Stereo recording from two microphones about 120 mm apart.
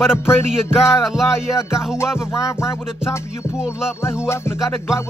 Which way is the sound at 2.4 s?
25° left (ahead or behind).